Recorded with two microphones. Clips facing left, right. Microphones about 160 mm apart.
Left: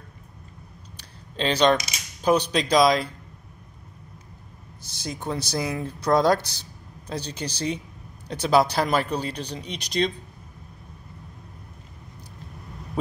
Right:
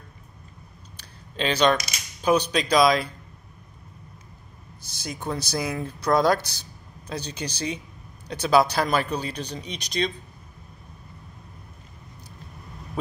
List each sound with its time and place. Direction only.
1.3 s speech: 30° left (ahead or behind)
4.9 s speech: 30° left (ahead or behind)